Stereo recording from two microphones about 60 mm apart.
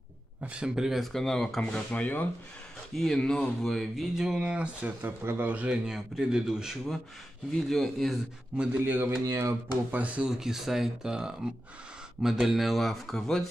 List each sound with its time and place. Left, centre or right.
0.4 s speech: right
0.7 s speech: centre
1.6 s speech: left
3.0 s speech: centre
5.0 s a man's voice: right
5.7 s speech: centre
7.6 s speech: centre
8.5 s a man's voice: right
9.2 s speech: right
9.8 s a man's voice: right
10.3 s speech: centre